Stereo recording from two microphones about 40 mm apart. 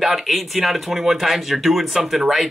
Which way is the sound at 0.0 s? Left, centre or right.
Centre.